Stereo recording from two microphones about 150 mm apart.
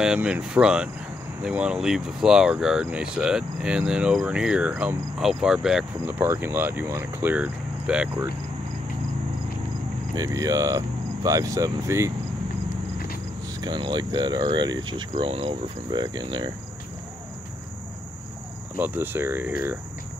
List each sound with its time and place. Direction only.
0.0 s speech: 5° right (ahead or behind)
10.1 s speech: 25° right (ahead or behind)
13.6 s speech: 30° right (ahead or behind)
18.8 s speech: 15° right (ahead or behind)